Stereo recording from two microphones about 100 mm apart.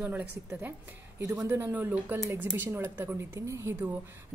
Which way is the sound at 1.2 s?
35° right (ahead or behind).